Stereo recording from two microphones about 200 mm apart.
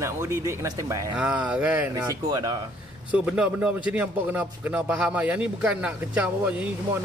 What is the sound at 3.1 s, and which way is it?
Speech, 5° right (ahead or behind).